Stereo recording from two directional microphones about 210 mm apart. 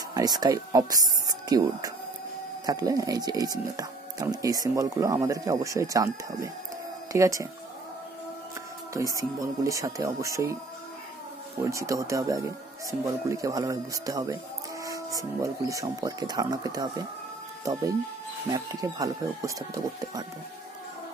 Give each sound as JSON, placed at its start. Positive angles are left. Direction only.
{"t": 0.1, "sound": "speech", "side_deg": -20}
{"t": 8.9, "sound": "speech", "side_deg": -15}
{"t": 11.6, "sound": "speech", "side_deg": -15}
{"t": 18.5, "sound": "speech", "side_deg": -15}